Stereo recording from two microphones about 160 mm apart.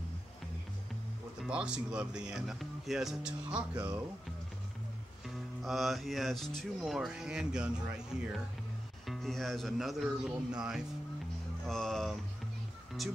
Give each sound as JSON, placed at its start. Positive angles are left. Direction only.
{"t": 1.4, "sound": "speech", "side_deg": -5}
{"t": 3.7, "sound": "speech", "side_deg": -25}
{"t": 5.2, "sound": "speech", "side_deg": 0}